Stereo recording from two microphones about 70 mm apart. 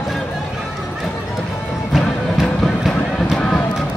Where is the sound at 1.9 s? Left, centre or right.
Centre.